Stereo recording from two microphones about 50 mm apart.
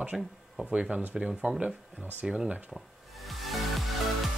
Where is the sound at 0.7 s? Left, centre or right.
Right.